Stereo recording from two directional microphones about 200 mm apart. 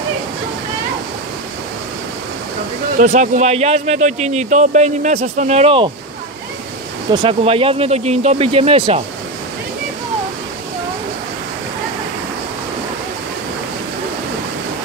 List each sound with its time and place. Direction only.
3.0 s speech: 35° right (ahead or behind)
7.1 s speech: 25° right (ahead or behind)